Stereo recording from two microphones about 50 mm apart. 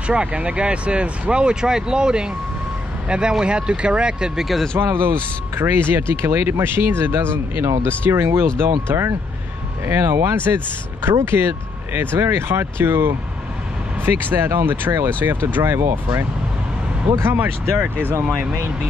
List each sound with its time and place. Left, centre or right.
0.0 s speech: right
4.9 s speech: right
11.2 s speech: right
17.3 s speech: right
18.2 s speech: centre